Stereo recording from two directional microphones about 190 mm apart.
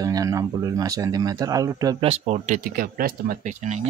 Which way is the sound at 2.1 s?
35° right (ahead or behind).